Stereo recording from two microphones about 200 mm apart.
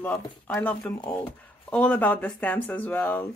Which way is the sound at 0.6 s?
5° left (ahead or behind).